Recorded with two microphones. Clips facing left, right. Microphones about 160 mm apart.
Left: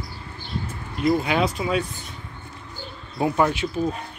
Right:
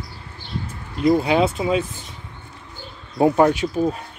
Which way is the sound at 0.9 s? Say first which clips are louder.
Right 4 dB; 30° right (ahead or behind).